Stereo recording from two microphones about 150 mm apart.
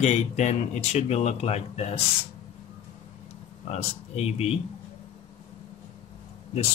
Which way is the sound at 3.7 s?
45° left (ahead or behind).